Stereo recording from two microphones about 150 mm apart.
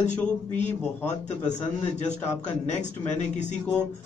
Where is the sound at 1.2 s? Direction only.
50° left (ahead or behind).